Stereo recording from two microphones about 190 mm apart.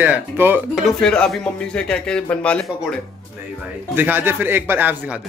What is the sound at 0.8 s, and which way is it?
Speech, 5° left (ahead or behind).